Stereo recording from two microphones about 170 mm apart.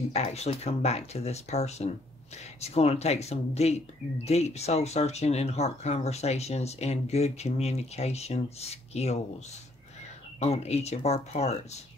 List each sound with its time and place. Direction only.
0.1 s speech: 40° left (ahead or behind)
10.4 s speech: 40° left (ahead or behind)